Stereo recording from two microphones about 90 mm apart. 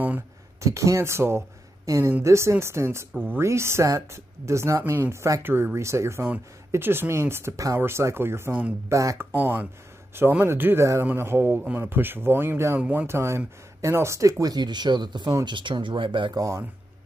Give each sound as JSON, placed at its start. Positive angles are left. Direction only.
{"t": 0.6, "sound": "speech", "side_deg": -35}
{"t": 9.3, "sound": "speech", "side_deg": -20}
{"t": 16.3, "sound": "speech", "side_deg": -35}